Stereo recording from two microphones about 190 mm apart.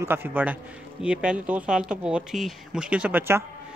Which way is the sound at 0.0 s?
10° right (ahead or behind).